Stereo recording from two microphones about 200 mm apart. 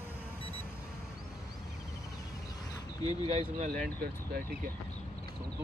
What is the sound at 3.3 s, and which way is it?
Speech, 40° right (ahead or behind).